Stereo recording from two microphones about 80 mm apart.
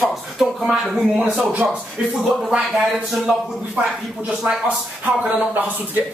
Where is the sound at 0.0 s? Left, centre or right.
Centre.